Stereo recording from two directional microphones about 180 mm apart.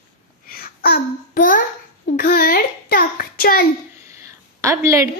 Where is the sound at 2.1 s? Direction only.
50° left (ahead or behind).